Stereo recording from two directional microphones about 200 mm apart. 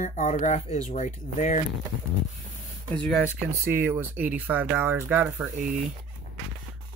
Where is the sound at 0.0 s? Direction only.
35° left (ahead or behind).